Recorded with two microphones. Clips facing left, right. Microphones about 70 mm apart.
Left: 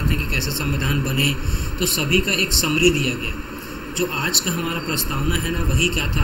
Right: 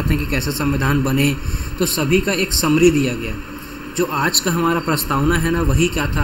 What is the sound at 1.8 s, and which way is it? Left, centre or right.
A man's voice, right.